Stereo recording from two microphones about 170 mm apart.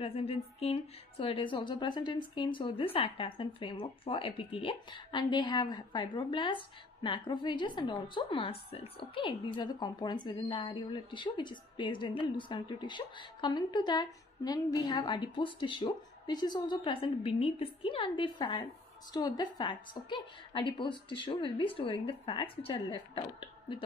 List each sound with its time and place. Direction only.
0.0 s a woman's voice: 35° left (ahead or behind)